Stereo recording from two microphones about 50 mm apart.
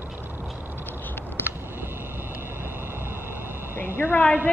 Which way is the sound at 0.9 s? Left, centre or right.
Left.